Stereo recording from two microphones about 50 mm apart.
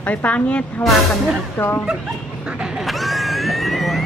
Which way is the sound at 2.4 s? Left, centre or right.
Right.